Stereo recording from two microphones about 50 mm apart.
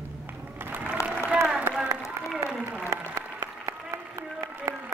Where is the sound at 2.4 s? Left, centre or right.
Right.